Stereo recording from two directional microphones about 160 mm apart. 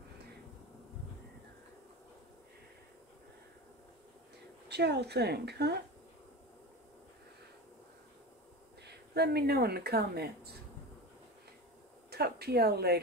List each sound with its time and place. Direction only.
4.6 s speech: 90° right
8.8 s speech: 90° right
12.1 s speech: 80° right